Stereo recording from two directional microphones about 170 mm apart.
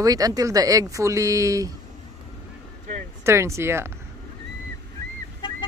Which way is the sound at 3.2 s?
15° right (ahead or behind).